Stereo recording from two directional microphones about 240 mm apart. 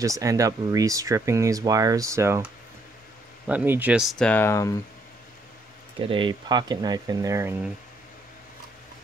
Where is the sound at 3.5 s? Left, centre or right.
Centre.